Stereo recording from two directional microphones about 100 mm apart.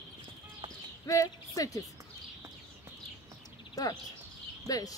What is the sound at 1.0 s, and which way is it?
Speech, 35° left (ahead or behind).